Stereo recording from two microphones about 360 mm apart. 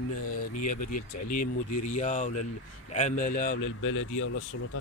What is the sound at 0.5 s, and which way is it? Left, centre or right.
Speech, left.